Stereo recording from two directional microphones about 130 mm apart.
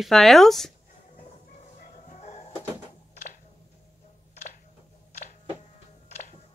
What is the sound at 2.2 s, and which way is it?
Music, 55° left (ahead or behind).